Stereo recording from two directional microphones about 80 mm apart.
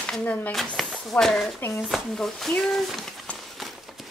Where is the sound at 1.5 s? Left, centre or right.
Left.